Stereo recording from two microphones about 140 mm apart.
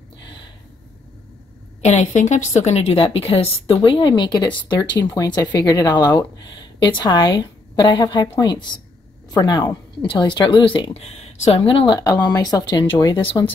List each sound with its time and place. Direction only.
1.8 s a woman's voice: 55° left (ahead or behind); by 13.2 s 35° left (ahead or behind)